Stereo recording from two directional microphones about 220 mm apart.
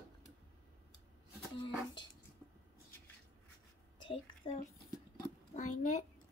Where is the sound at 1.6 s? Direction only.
20° left (ahead or behind).